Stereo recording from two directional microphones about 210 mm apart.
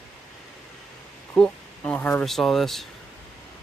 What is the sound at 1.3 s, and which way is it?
Speech, 5° left (ahead or behind).